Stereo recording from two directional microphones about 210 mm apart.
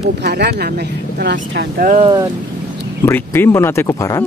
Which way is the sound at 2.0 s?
20° right (ahead or behind).